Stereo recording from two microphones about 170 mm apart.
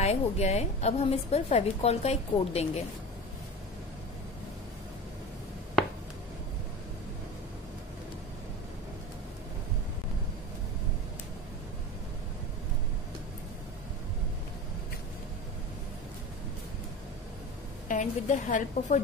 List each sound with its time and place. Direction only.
0.0 s a woman's voice: 40° left (ahead or behind)
17.8 s a woman's voice: 50° left (ahead or behind)